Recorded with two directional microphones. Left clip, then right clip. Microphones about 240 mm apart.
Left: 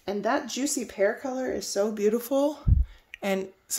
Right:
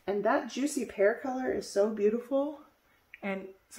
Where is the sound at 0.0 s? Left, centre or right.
Left.